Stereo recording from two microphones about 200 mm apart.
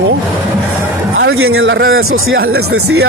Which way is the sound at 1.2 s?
90° right.